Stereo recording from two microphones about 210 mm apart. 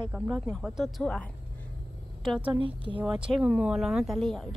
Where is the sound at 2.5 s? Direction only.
25° right (ahead or behind).